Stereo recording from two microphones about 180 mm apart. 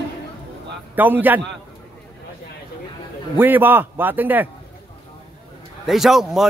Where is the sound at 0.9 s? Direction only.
10° right (ahead or behind).